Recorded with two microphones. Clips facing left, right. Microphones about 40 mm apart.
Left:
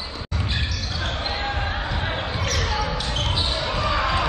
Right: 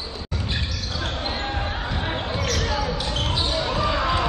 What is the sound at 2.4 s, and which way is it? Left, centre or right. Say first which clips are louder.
Basketball bounce: even; centre.